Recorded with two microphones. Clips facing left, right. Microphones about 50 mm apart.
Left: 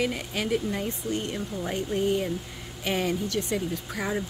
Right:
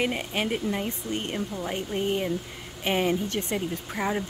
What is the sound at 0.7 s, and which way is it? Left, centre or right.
Speech, right.